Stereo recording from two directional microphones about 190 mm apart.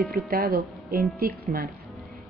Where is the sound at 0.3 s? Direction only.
50° right (ahead or behind).